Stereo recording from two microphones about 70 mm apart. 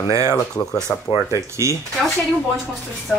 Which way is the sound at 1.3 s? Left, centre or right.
Right.